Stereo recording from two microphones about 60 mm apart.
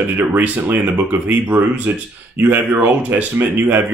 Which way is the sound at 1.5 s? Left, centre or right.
Right.